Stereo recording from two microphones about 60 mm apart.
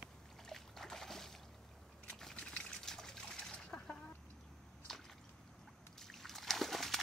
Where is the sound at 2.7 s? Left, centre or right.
Centre.